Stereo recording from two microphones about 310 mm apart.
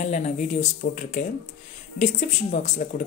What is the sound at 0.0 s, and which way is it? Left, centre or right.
Speech, left.